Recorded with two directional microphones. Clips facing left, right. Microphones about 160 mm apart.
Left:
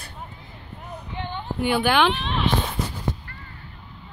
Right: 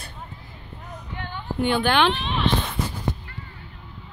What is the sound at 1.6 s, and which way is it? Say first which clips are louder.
Speech: even; 10° left (ahead or behind).